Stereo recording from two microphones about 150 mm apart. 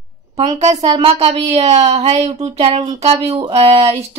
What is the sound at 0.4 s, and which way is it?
Speech, 45° right (ahead or behind).